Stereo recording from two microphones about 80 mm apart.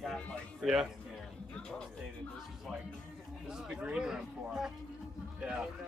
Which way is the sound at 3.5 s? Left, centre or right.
Centre.